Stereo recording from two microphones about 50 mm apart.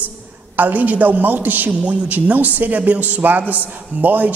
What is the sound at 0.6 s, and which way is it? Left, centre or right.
A woman's voice, right.